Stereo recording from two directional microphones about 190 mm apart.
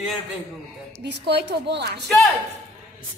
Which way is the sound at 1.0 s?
60° right (ahead or behind).